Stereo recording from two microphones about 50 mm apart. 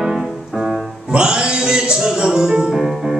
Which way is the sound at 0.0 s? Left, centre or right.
Centre.